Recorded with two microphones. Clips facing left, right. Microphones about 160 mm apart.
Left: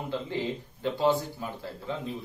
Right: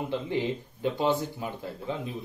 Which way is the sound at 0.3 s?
20° right (ahead or behind).